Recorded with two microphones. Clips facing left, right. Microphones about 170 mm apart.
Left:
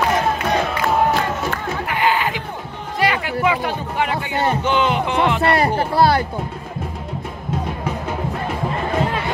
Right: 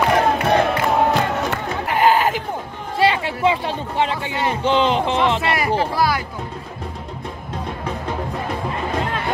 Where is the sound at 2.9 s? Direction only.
30° right (ahead or behind).